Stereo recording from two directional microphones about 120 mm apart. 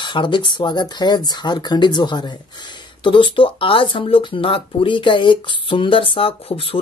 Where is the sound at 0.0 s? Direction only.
40° left (ahead or behind).